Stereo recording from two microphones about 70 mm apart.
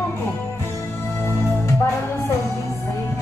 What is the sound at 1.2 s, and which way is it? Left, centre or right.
Music, left.